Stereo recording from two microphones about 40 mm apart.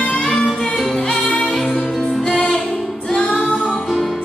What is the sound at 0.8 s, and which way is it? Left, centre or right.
Music, centre.